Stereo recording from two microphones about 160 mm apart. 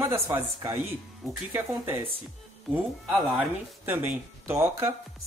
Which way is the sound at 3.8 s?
15° right (ahead or behind).